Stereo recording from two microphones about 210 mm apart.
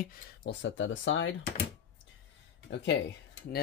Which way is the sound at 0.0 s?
40° left (ahead or behind).